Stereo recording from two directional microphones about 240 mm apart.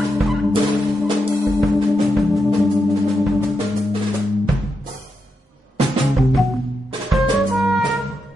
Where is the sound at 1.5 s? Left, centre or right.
Centre.